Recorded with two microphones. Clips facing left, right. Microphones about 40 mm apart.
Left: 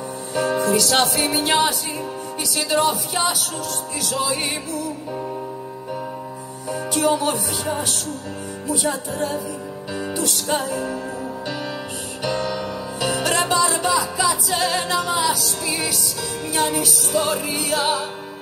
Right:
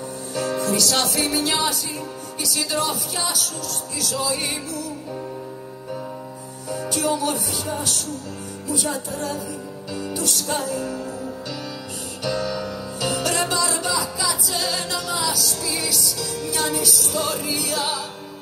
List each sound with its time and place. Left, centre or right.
0.3 s music: left
6.7 s music: left
12.2 s music: left